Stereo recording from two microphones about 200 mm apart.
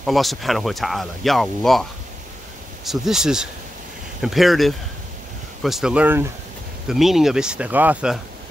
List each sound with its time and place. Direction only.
0.0 s speech: centre (ahead or behind)